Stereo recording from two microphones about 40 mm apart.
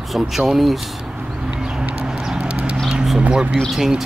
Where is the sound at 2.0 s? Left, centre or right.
Right.